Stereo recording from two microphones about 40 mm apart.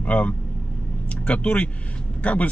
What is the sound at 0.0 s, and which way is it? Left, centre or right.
Speech, left.